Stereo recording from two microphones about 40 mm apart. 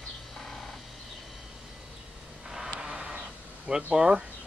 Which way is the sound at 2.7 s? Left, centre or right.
Centre.